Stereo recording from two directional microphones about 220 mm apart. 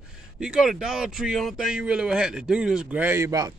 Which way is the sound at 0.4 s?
5° right (ahead or behind).